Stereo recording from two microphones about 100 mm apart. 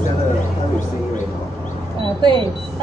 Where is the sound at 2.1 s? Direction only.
50° right (ahead or behind).